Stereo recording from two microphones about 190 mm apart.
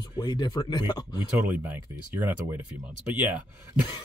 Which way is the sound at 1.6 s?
10° right (ahead or behind).